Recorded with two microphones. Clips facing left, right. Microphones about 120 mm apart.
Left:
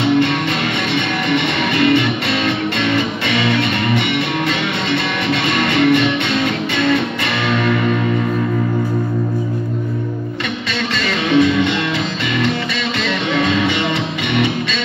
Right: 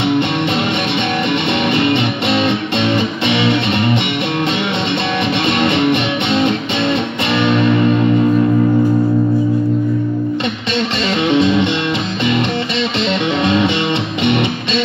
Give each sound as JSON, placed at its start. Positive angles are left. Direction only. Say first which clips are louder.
{"t": 1.3, "sound": "music", "louder": "left 1 dB", "side_deg": -25}
{"t": 5.6, "sound": "music", "louder": "left 2 dB", "side_deg": -25}
{"t": 11.3, "sound": "music", "louder": "left 2 dB", "side_deg": -25}
{"t": 13.4, "sound": "music", "louder": "right 1 dB", "side_deg": -25}